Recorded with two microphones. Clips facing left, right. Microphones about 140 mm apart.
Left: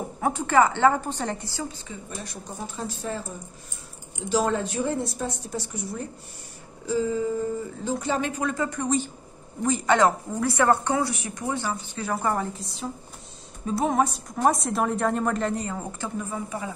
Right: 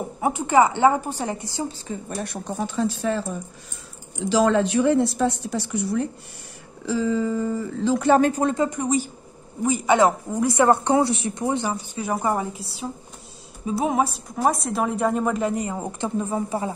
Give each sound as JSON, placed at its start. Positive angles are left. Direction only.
{"t": 0.2, "sound": "a woman's voice", "side_deg": -10}
{"t": 1.9, "sound": "a woman's voice", "side_deg": -55}
{"t": 6.9, "sound": "music", "side_deg": -90}
{"t": 7.8, "sound": "speech", "side_deg": -75}
{"t": 8.2, "sound": "speech", "side_deg": -30}
{"t": 8.6, "sound": "a woman's voice", "side_deg": -15}